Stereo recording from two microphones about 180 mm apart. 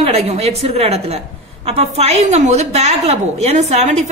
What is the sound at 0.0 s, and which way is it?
A woman's voice, 35° right (ahead or behind).